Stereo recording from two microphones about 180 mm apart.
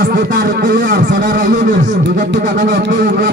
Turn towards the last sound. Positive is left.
turn(degrees=-50)  # may be behind; listen again after turning